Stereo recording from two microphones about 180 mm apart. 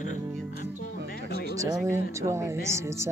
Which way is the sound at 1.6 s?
15° right (ahead or behind).